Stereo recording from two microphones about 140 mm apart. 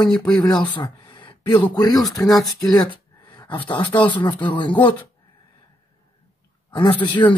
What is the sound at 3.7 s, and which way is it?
Speech, 35° left (ahead or behind).